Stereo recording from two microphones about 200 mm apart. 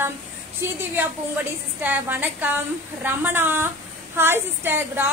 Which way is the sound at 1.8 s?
10° right (ahead or behind).